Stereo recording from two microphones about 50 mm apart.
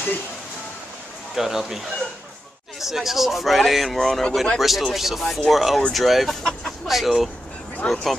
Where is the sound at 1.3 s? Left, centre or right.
Centre.